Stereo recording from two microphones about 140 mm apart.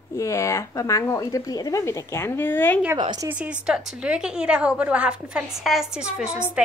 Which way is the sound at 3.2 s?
10° right (ahead or behind).